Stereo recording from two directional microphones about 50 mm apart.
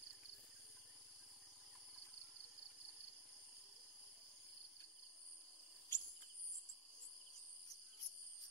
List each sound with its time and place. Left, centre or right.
5.9 s cricket: left